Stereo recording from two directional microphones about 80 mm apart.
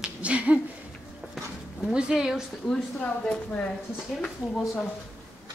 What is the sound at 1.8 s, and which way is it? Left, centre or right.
Speech, centre.